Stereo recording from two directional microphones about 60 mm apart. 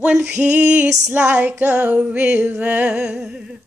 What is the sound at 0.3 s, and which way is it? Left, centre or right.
Music, right.